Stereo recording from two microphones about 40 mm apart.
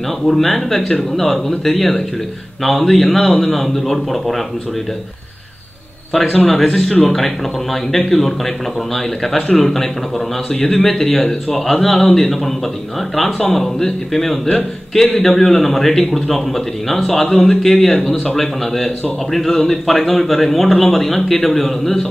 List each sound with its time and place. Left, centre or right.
0.2 s speech: centre
6.4 s a man's voice: centre
11.9 s a man's voice: centre
13.5 s a man's voice: centre